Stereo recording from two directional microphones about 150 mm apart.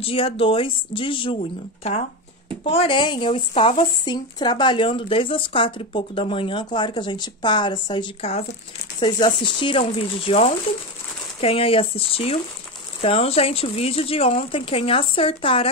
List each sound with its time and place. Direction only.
0.0 s speech: 40° left (ahead or behind)
2.6 s speech: 40° left (ahead or behind)
8.2 s speech: 45° left (ahead or behind)
9.0 s speech: 30° left (ahead or behind)